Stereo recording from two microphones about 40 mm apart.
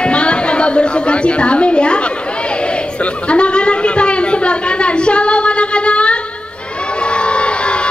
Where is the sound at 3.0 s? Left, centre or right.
Left.